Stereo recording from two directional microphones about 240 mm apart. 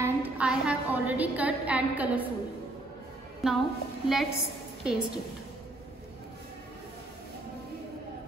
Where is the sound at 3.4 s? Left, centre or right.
Centre.